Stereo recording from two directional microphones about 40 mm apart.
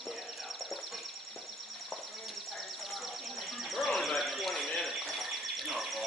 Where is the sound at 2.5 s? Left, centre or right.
Centre.